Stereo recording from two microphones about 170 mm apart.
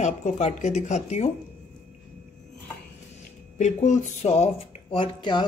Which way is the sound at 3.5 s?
45° left (ahead or behind).